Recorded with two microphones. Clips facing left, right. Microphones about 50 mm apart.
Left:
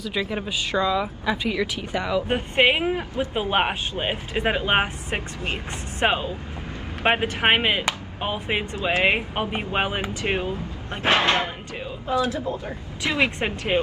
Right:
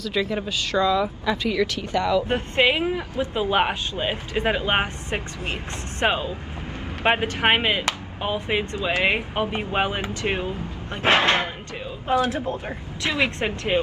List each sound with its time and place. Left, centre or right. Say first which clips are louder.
0.0 s speech: right 2 dB; centre
11.0 s speech: right 1 dB; right
13.1 s speech: left 1 dB; left